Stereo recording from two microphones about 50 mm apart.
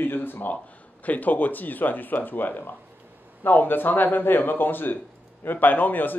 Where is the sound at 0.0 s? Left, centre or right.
Left.